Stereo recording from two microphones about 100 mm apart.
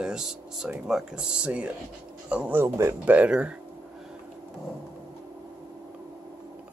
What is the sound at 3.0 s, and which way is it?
Speech, 15° right (ahead or behind).